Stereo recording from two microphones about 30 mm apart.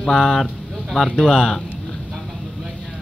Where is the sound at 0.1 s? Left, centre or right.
Centre.